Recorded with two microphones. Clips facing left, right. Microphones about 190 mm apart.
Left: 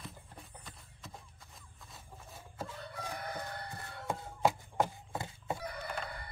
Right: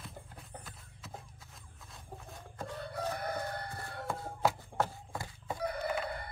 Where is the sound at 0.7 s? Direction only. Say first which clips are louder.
Right 2 dB; centre (ahead or behind).